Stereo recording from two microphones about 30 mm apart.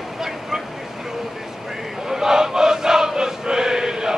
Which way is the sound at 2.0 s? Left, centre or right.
Centre.